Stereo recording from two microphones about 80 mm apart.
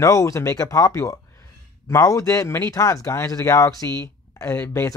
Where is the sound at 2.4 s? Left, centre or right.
Left.